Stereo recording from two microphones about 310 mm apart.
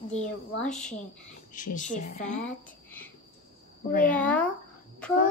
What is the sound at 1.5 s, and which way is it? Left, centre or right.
Speech, left.